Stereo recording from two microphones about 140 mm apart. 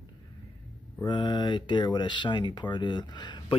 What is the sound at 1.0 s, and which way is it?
Speech, 35° left (ahead or behind).